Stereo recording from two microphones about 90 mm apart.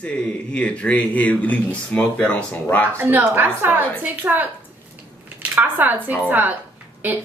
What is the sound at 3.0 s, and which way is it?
A woman's voice, 25° right (ahead or behind).